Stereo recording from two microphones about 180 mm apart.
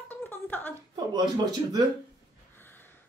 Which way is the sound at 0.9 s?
25° right (ahead or behind).